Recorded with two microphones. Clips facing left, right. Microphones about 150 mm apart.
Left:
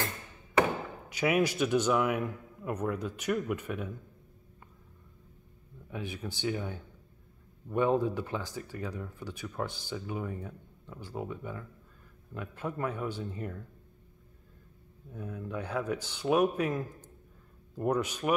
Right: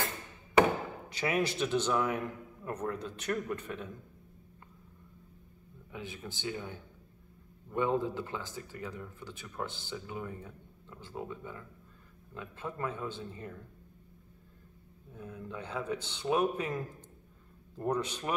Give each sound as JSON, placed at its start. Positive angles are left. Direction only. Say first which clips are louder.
{"t": 1.1, "sound": "a man's voice", "louder": "left 4 dB", "side_deg": 10}
{"t": 5.9, "sound": "a man's voice", "louder": "left 4 dB", "side_deg": 15}
{"t": 15.1, "sound": "a man's voice", "louder": "left 5 dB", "side_deg": 10}